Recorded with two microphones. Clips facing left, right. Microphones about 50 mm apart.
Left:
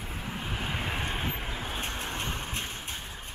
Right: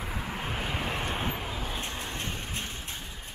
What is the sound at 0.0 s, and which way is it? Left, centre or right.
Vehicle, right.